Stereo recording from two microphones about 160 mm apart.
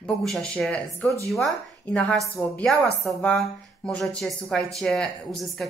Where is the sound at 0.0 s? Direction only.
5° left (ahead or behind).